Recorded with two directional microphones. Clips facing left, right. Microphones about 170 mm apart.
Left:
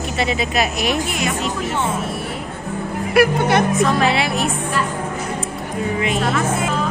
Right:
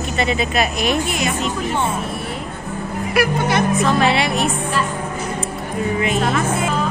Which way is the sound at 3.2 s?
55° left (ahead or behind).